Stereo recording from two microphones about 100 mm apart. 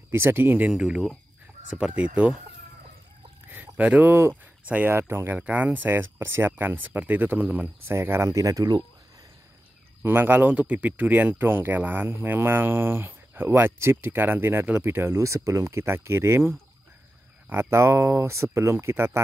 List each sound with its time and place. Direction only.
0.1 s speech: 25° right (ahead or behind)
0.7 s speech: 5° right (ahead or behind)
3.4 s speech: 20° right (ahead or behind); by 8.8 s 40° right (ahead or behind)
10.0 s speech: 20° right (ahead or behind)